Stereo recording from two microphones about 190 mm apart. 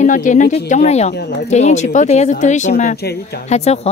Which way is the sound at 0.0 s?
40° left (ahead or behind).